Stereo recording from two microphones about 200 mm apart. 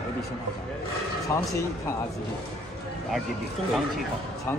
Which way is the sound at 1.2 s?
15° left (ahead or behind).